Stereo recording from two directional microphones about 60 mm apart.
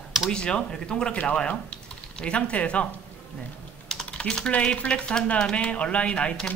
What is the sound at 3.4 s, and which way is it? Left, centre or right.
Typing, centre.